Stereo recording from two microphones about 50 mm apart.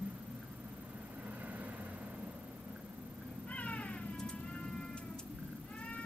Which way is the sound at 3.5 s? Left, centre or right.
Left.